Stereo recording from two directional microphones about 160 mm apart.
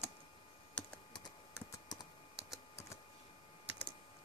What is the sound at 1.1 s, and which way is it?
Typing, 25° left (ahead or behind).